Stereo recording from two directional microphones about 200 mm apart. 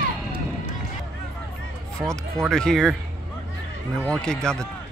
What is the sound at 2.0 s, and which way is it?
Speech, 5° left (ahead or behind).